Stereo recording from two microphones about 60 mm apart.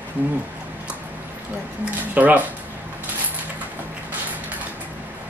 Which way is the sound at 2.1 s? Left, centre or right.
Right.